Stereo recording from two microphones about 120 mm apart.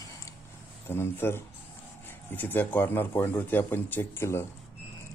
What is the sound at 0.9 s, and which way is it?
Speech, 20° left (ahead or behind).